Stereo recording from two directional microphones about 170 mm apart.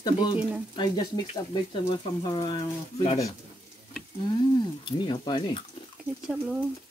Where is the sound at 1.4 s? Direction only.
25° left (ahead or behind).